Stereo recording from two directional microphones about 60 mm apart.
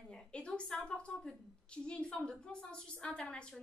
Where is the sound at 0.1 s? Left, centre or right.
Centre.